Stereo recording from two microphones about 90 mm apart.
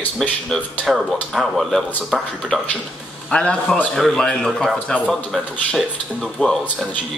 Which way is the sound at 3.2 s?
15° left (ahead or behind).